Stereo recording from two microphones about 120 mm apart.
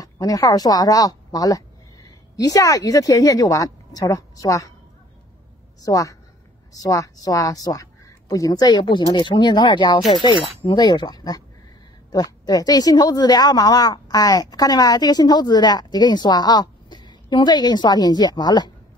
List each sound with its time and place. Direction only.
0.0 s a woman's voice: 30° left (ahead or behind)
5.9 s a woman's voice: 30° left (ahead or behind)